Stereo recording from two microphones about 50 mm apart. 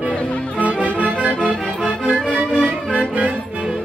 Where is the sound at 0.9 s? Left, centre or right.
Right.